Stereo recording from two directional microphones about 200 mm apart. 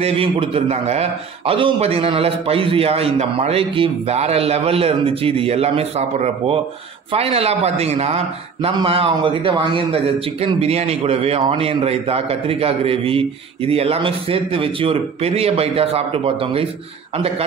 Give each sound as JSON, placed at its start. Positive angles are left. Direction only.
{"t": 0.0, "sound": "a man's voice", "side_deg": -30}